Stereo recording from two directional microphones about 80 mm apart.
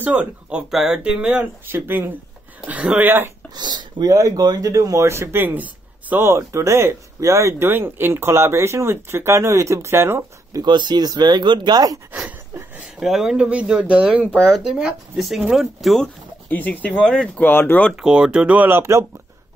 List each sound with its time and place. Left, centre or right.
0.0 s speech: centre
3.5 s speech: right
4.1 s speech: right
10.5 s speech: right
12.1 s a sound: centre
13.0 s speech: centre
15.1 s speech: centre
15.4 s speech: centre
16.4 s speech: left
17.5 s speech: left
18.0 s speech: centre; by 19.0 s right